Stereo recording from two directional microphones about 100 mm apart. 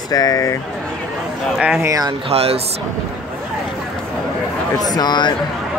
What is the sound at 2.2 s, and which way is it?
Speech, 90° right.